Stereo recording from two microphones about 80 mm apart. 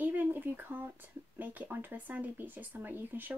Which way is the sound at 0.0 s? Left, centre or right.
Right.